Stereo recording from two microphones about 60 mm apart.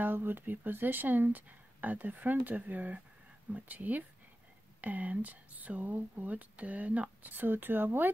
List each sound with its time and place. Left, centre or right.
0.0 s speech: right